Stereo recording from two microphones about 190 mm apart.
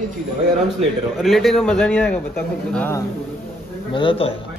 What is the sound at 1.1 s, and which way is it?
A man's voice, centre (ahead or behind).